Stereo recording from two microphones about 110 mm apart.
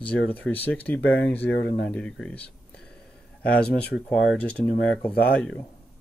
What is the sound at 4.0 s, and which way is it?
Speech, 5° left (ahead or behind).